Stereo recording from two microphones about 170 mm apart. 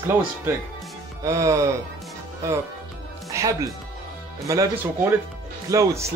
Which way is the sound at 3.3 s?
20° right (ahead or behind).